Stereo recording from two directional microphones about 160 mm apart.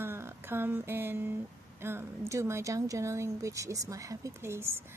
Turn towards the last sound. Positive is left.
turn(degrees=-15)  # may be behind; listen again after turning